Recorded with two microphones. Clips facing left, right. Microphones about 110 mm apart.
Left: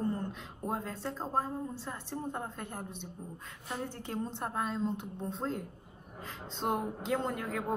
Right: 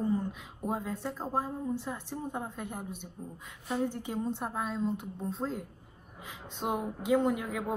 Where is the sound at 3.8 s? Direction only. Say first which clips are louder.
Right 4 dB; 15° right (ahead or behind).